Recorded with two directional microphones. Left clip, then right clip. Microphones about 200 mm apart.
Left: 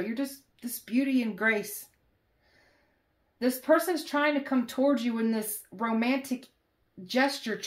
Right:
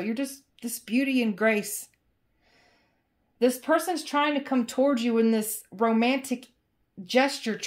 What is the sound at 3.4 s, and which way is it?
Speech, 50° right (ahead or behind).